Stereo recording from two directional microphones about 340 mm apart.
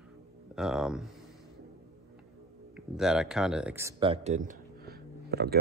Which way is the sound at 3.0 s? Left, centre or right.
Centre.